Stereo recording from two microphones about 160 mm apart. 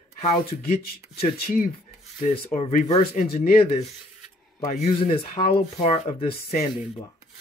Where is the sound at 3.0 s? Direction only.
70° left (ahead or behind).